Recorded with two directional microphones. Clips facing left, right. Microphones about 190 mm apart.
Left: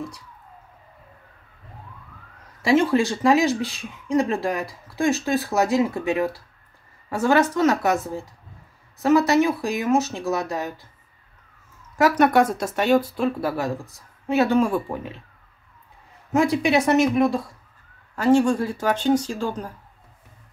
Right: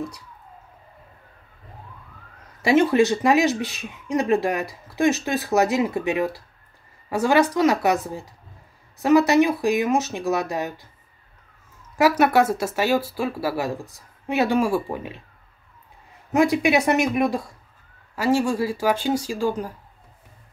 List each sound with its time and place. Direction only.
2.6 s speech: 20° right (ahead or behind)
12.0 s speech: 5° right (ahead or behind)
16.3 s speech: 10° right (ahead or behind)